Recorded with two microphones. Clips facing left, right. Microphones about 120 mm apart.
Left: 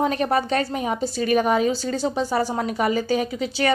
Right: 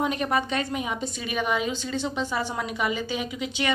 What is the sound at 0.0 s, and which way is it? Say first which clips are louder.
A woman's voice: left 4 dB; 35° left (ahead or behind).